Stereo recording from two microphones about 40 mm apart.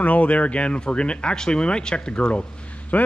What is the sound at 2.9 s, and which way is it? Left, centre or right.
Speech, left.